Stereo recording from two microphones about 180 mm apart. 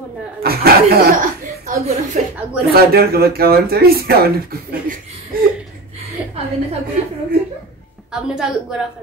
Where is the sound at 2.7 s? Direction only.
60° right (ahead or behind).